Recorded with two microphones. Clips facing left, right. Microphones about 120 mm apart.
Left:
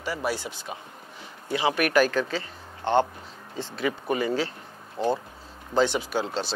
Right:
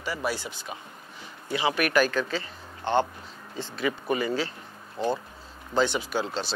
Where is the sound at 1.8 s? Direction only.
45° left (ahead or behind).